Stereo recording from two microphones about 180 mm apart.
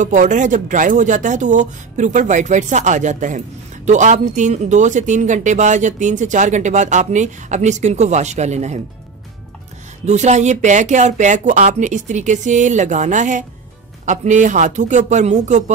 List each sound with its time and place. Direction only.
0.0 s speech: 45° right (ahead or behind)
10.0 s speech: 40° right (ahead or behind)